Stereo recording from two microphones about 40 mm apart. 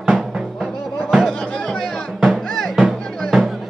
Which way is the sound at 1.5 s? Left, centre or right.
Left.